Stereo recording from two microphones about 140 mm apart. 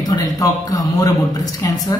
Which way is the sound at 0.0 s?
25° left (ahead or behind).